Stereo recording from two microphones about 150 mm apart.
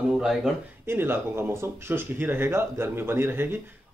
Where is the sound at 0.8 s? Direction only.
15° right (ahead or behind).